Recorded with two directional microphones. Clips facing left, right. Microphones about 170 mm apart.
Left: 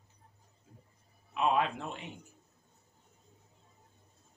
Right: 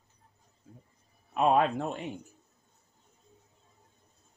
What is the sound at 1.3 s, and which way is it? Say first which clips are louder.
Speech: right 5 dB; 45° right (ahead or behind).